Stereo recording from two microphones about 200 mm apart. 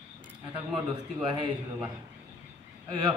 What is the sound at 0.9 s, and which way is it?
A man's voice, 25° right (ahead or behind).